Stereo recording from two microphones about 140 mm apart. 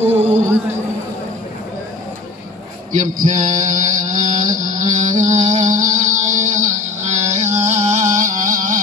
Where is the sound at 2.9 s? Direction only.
65° right (ahead or behind).